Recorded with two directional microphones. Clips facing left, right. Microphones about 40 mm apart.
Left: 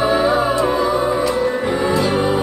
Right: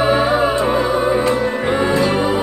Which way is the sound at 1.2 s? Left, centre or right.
Right.